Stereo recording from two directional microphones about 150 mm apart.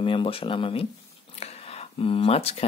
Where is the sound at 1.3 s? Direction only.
45° left (ahead or behind).